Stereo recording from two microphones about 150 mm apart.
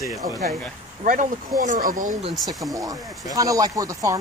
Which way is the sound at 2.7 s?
25° right (ahead or behind).